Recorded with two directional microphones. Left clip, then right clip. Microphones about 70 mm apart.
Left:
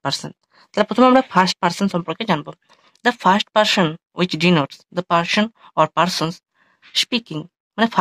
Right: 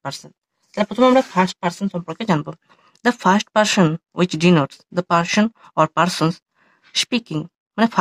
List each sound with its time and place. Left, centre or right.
0.0 s speech: centre
2.0 s speech: right